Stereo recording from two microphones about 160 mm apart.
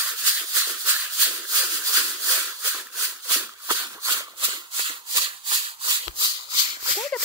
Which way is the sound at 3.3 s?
10° right (ahead or behind).